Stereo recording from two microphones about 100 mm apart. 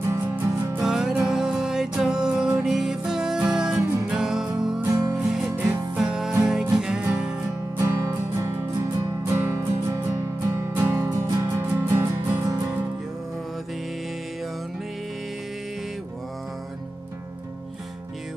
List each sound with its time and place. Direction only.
0.0 s music: 25° right (ahead or behind)
0.7 s music: 5° right (ahead or behind)
4.8 s music: 35° right (ahead or behind)
5.1 s music: 5° right (ahead or behind)
8.4 s music: 30° right (ahead or behind)
11.1 s music: 35° right (ahead or behind)
11.6 s music: 20° right (ahead or behind)